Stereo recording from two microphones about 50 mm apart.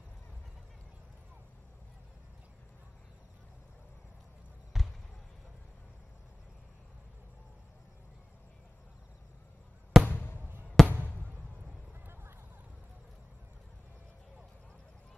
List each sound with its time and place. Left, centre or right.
4.7 s basketball bounce: centre
10.0 s a sound: left
12.1 s clip-clop: right